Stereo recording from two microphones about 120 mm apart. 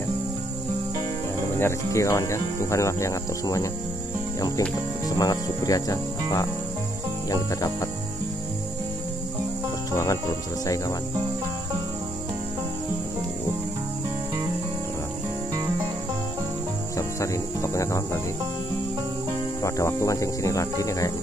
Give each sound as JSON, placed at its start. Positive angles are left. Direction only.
{"t": 1.6, "sound": "cricket", "side_deg": 25}
{"t": 5.1, "sound": "cricket", "side_deg": 30}
{"t": 9.9, "sound": "cricket", "side_deg": 30}
{"t": 16.9, "sound": "music", "side_deg": 25}
{"t": 19.6, "sound": "cricket", "side_deg": 25}